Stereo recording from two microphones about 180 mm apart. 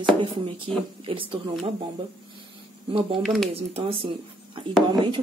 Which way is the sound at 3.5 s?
35° right (ahead or behind).